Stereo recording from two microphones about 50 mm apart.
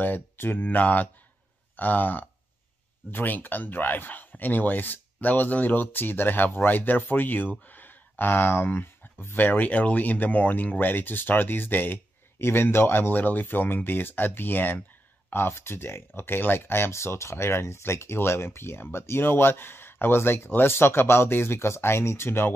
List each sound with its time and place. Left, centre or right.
0.0 s speech: left